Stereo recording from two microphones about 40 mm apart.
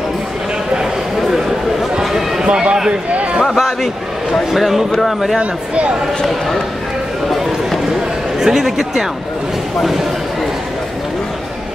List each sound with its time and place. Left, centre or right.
1.3 s a sound: centre
2.4 s a man's voice: right
3.1 s a sound: right
3.5 s speech: centre
5.4 s speech: right
8.4 s speech: centre